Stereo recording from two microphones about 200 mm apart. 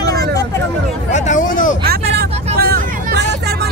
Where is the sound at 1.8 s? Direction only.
50° right (ahead or behind).